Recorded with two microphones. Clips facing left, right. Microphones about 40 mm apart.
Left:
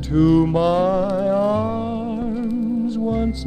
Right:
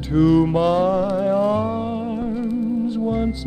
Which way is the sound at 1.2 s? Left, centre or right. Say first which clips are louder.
Even; centre.